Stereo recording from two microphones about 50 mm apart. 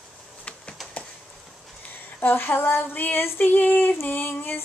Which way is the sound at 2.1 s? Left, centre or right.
Left.